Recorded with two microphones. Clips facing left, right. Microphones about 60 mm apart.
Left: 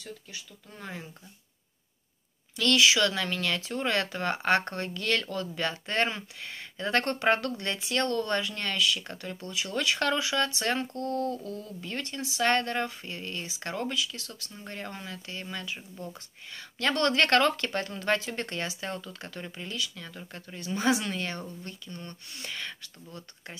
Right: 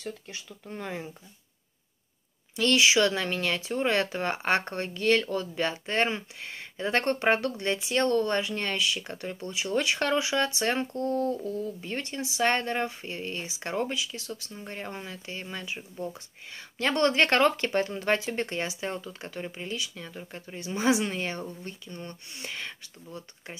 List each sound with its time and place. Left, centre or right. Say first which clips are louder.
0.0 s speech: right 5 dB; right
2.5 s speech: right 1 dB; centre